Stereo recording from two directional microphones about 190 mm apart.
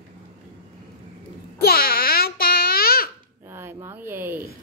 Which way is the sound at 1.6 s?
55° left (ahead or behind).